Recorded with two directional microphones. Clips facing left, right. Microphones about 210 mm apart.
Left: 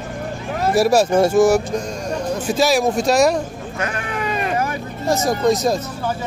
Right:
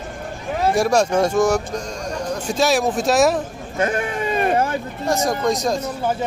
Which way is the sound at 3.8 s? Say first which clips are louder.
Right 4 dB; 30° right (ahead or behind).